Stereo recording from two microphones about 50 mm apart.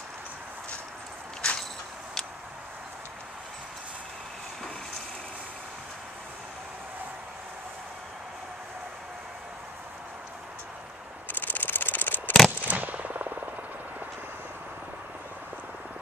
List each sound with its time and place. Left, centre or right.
1.4 s a sound: centre
11.3 s camera: left
12.4 s machine gun: right